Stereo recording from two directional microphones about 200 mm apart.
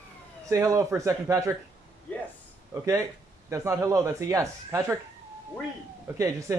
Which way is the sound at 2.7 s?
15° right (ahead or behind).